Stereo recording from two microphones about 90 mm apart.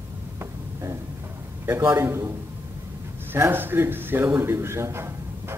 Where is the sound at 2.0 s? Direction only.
30° right (ahead or behind).